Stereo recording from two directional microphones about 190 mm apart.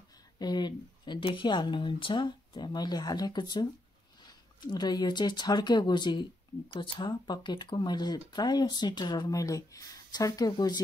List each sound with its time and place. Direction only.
0.4 s speech: 20° left (ahead or behind)